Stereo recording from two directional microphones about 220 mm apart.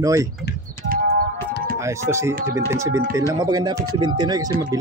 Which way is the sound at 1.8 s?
15° right (ahead or behind).